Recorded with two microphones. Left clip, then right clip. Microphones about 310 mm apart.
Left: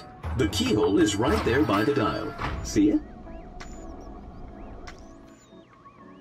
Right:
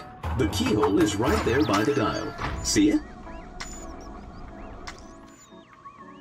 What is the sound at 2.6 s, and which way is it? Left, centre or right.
Music, centre.